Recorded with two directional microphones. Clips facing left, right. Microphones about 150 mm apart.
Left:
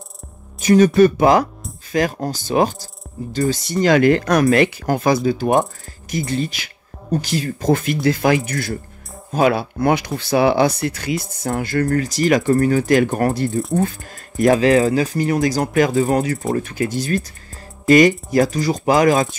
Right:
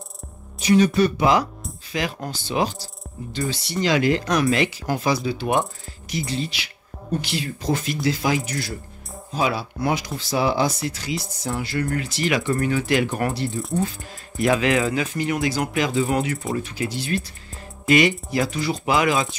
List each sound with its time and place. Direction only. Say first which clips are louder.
0.6 s speech: left 6 dB; 45° left (ahead or behind)